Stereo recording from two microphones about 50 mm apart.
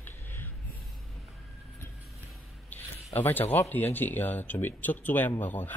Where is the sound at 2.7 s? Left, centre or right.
Left.